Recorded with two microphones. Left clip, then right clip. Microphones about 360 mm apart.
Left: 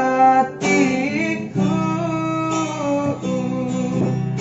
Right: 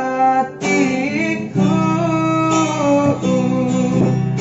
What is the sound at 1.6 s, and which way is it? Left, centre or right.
Guitar, right.